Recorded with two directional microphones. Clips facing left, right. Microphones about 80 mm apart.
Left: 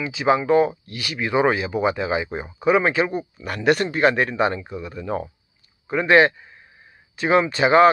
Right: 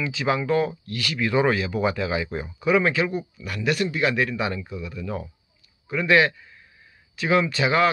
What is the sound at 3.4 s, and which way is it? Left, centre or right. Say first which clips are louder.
Speech: left 5 dB; left.